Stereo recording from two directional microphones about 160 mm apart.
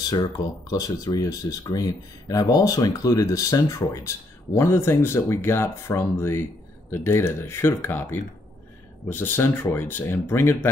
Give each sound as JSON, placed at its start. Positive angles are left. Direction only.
{"t": 0.1, "sound": "speech", "side_deg": 20}